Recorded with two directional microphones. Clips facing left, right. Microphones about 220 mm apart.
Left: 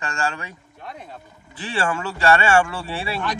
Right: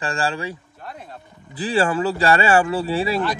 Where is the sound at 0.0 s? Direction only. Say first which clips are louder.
Right 3 dB; 30° right (ahead or behind).